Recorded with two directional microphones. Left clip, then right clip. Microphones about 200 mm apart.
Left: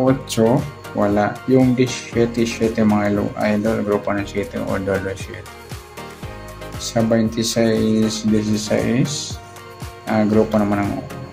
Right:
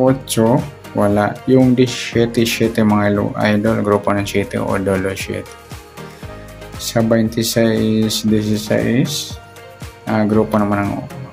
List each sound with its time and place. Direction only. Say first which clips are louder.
0.0 s speech: right 2 dB; 15° right (ahead or behind)
7.1 s speech: right 3 dB; 15° right (ahead or behind)